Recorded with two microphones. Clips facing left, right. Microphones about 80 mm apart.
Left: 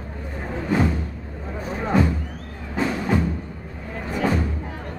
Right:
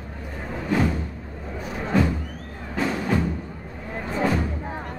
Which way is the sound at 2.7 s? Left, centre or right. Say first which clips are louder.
Left 1 dB; centre.